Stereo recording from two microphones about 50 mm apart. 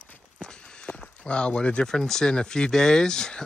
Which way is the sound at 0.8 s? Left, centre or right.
Centre.